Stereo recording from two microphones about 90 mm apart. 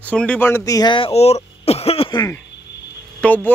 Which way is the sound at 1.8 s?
90° left.